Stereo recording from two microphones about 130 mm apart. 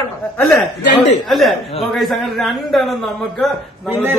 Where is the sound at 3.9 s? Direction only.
15° right (ahead or behind).